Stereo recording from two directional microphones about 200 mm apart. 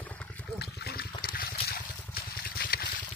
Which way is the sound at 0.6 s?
50° left (ahead or behind).